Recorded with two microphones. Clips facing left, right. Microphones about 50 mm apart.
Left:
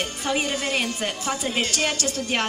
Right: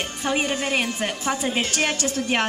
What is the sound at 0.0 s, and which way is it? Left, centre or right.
A woman's voice, right.